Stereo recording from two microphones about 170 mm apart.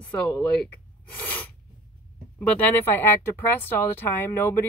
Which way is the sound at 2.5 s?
10° left (ahead or behind).